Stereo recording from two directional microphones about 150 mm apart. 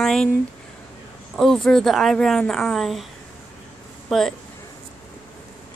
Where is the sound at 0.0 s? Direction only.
5° left (ahead or behind).